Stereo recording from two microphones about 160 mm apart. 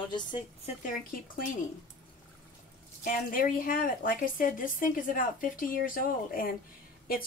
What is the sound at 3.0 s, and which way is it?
A woman's voice, 60° left (ahead or behind).